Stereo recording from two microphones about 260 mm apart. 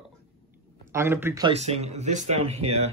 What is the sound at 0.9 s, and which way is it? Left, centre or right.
Speech, centre.